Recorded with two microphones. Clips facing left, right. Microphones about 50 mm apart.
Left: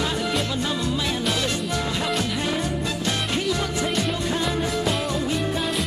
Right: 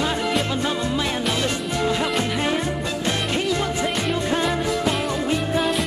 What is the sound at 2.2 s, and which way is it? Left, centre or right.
Music, right.